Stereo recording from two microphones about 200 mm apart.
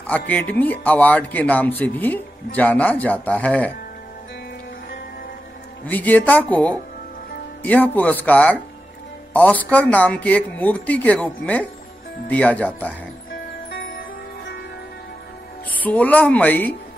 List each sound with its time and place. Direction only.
0.0 s speech: 10° left (ahead or behind)
5.9 s speech: 10° left (ahead or behind)
13.7 s music: 50° left (ahead or behind)
15.8 s speech: 10° left (ahead or behind)